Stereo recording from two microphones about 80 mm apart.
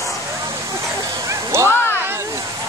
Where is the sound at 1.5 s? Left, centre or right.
Right.